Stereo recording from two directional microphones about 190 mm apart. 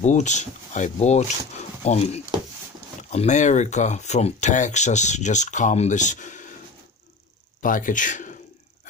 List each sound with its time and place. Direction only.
0.0 s speech: 40° left (ahead or behind)
7.6 s speech: 45° left (ahead or behind)